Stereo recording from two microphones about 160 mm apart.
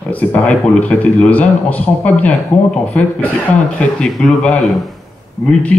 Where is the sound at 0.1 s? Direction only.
5° left (ahead or behind).